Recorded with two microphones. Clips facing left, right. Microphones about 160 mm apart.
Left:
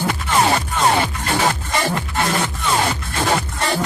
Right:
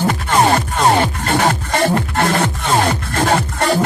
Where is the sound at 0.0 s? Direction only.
50° right (ahead or behind).